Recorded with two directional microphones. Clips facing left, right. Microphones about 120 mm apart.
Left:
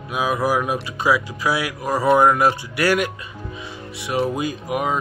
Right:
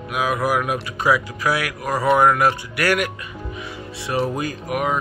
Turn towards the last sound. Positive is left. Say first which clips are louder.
# even
turn(degrees=20)  # may be behind; listen again after turning